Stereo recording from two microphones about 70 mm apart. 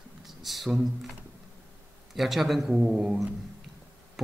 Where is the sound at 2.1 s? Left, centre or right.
Centre.